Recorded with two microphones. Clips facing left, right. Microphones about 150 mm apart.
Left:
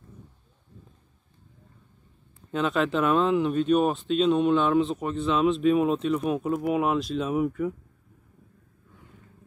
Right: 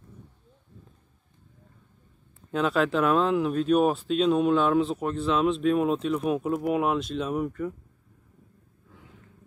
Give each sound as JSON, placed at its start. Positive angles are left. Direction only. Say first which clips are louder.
{"t": 2.5, "sound": "speech", "louder": "right 1 dB", "side_deg": 0}